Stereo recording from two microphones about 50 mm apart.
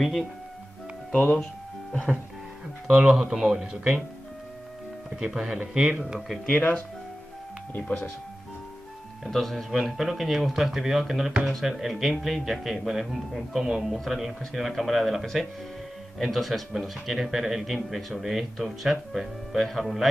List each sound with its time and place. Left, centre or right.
0.0 s speech: centre
1.4 s music: centre
2.9 s speech: centre
5.2 s speech: centre
6.1 s speech: centre
7.7 s speech: left
9.2 s speech: centre